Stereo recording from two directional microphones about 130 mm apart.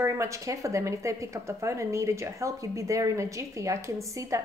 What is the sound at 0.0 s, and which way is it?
A woman's voice, 25° right (ahead or behind).